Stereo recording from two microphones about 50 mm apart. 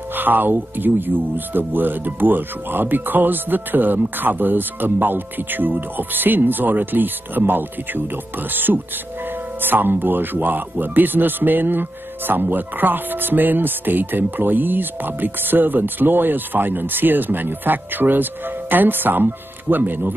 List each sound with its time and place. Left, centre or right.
0.1 s speech: right